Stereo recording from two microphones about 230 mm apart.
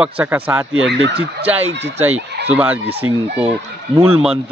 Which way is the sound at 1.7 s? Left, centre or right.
Right.